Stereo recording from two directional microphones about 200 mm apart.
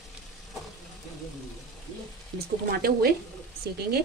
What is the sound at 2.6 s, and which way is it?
Speech, 50° right (ahead or behind).